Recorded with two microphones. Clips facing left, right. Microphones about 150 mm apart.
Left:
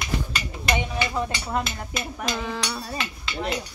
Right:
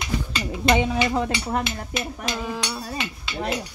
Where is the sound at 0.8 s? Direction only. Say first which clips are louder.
Right 4 dB; 90° right.